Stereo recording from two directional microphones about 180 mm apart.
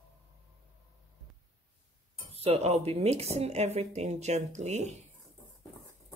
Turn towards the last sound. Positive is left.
turn(degrees=-40)  # may be behind; listen again after turning